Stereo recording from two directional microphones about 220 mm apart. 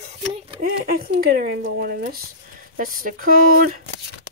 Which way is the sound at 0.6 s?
40° right (ahead or behind).